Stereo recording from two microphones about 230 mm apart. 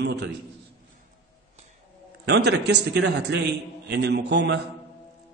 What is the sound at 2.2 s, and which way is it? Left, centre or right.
A man's voice, right.